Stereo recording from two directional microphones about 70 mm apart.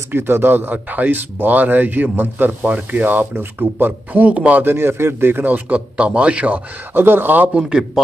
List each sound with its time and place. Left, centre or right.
0.1 s a man's voice: right
4.6 s a man's voice: right; by 6.6 s centre
6.9 s a man's voice: right
7.5 s a man's voice: centre